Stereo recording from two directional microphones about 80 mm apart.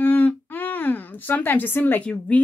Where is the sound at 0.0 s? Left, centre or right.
Left.